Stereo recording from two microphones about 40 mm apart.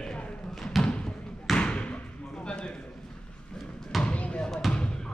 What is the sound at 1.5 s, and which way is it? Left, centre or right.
Basketball bounce, left.